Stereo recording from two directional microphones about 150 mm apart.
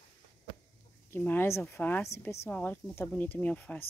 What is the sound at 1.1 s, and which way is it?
Speech, 15° left (ahead or behind).